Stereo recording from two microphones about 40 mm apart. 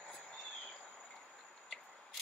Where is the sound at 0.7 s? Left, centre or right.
Centre.